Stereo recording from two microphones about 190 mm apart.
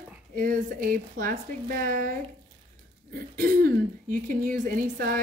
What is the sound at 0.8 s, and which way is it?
A woman's voice, 45° right (ahead or behind).